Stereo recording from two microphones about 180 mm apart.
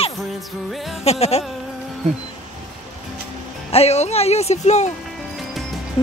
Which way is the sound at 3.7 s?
35° left (ahead or behind).